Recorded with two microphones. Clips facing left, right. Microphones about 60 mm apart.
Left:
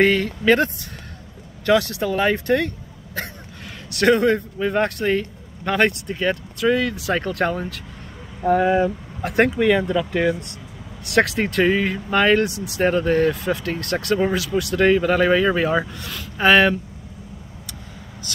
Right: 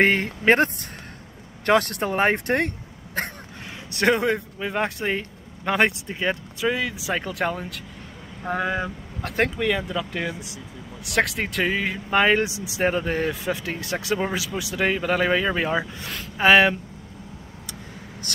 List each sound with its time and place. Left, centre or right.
0.0 s speech: right
1.7 s speech: right
3.9 s speech: centre
9.3 s speech: centre
16.0 s speech: right
16.3 s speech: centre